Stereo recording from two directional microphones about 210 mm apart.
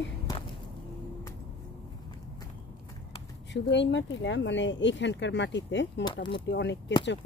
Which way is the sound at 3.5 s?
60° left (ahead or behind).